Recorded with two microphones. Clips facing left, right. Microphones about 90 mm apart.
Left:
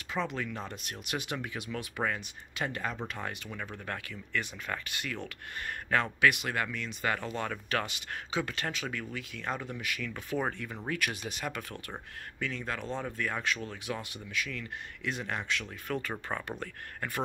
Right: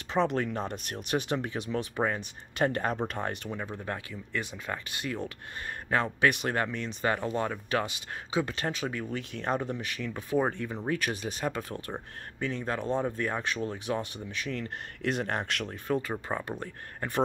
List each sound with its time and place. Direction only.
0.3 s speech: 40° right (ahead or behind)
2.5 s speech: 45° right (ahead or behind)
3.4 s speech: 20° right (ahead or behind)
6.2 s speech: 35° right (ahead or behind)
9.1 s speech: 35° right (ahead or behind); by 15.7 s 50° right (ahead or behind)
15.9 s speech: 20° right (ahead or behind)